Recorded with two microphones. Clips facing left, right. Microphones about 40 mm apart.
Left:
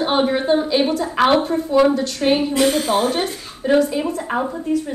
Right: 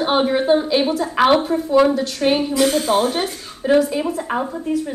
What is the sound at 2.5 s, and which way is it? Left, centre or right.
Speech, left.